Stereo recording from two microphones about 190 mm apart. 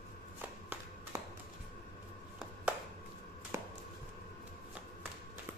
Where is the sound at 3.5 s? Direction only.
10° right (ahead or behind).